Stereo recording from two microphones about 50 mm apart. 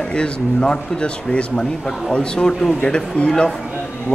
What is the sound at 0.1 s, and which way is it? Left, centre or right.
Speech, centre.